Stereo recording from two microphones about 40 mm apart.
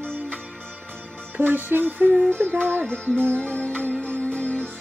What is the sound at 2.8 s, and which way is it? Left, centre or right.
Music, left.